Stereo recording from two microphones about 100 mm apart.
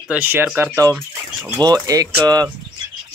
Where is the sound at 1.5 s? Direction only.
40° right (ahead or behind).